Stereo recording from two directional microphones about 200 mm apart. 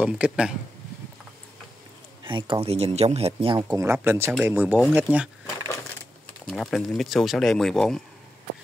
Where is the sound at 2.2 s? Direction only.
25° right (ahead or behind); by 5.3 s 5° right (ahead or behind).